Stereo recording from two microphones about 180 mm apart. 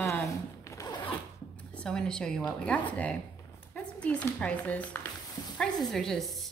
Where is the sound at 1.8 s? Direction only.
5° left (ahead or behind).